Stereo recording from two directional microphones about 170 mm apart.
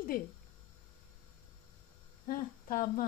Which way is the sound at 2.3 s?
55° left (ahead or behind).